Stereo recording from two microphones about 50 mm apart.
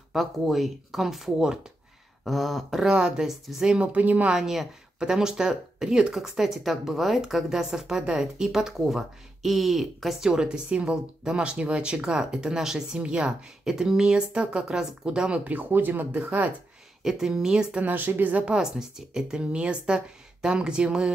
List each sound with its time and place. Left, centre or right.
0.1 s speech: centre
2.2 s speech: centre
2.8 s speech: centre
3.7 s speech: right
4.3 s speech: centre
10.3 s speech: centre
13.0 s speech: right
13.7 s speech: centre; by 15.6 s right
15.7 s speech: right
17.0 s speech: centre
17.8 s speech: right
18.4 s speech: centre